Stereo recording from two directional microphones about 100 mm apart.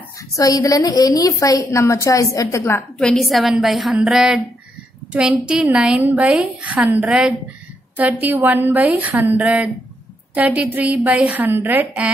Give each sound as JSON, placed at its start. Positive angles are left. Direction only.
{"t": 0.4, "sound": "a woman's voice", "side_deg": 35}
{"t": 3.0, "sound": "a woman's voice", "side_deg": 5}